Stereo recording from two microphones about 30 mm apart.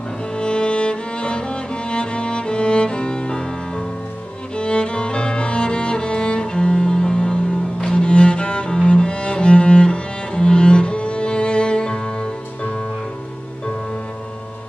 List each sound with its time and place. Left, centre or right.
0.4 s music: left
4.6 s music: left
7.9 s cello: left